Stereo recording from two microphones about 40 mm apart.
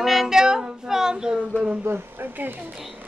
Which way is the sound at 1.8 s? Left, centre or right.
Right.